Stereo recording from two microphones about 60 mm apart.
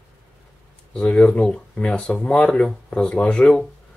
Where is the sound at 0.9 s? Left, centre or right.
Centre.